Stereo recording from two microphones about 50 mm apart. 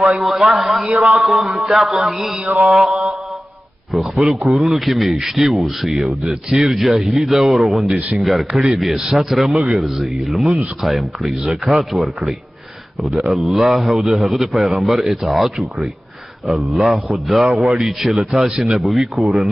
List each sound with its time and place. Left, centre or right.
0.0 s a man's voice: centre
1.0 s a sound: centre
2.9 s mantra: centre
3.9 s a man's voice: centre